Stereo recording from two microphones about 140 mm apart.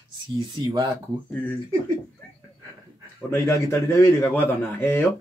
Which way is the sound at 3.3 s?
20° left (ahead or behind).